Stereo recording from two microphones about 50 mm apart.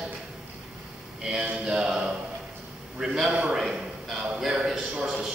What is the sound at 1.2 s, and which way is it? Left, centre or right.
A man's voice, centre.